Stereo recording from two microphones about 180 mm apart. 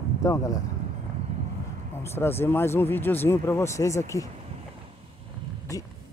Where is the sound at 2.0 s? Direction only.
15° left (ahead or behind).